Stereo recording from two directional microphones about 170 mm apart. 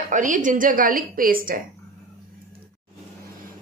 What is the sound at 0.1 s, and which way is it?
A woman's voice, 50° right (ahead or behind).